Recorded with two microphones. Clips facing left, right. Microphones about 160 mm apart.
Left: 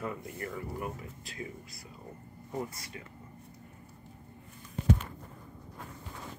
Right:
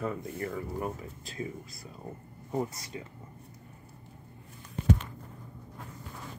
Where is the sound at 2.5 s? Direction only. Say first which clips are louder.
Right 5 dB; 25° right (ahead or behind).